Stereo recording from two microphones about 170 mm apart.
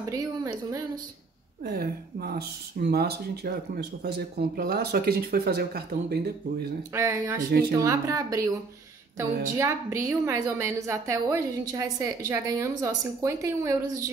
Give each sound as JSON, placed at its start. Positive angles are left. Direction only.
{"t": 0.1, "sound": "speech", "side_deg": -20}
{"t": 1.6, "sound": "speech", "side_deg": -65}
{"t": 6.9, "sound": "a woman's voice", "side_deg": -15}
{"t": 9.6, "sound": "a woman's voice", "side_deg": -15}